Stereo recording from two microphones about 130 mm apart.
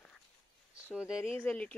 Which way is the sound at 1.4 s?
10° left (ahead or behind).